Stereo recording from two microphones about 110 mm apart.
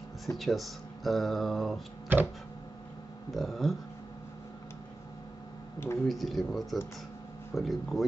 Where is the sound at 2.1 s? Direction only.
15° right (ahead or behind).